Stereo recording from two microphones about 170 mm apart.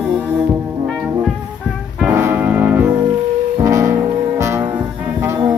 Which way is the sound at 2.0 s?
10° right (ahead or behind).